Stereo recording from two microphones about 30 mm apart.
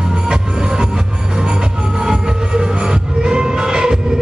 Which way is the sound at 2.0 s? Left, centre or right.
Right.